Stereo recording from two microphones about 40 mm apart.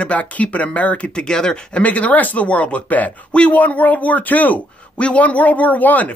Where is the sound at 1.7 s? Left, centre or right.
Left.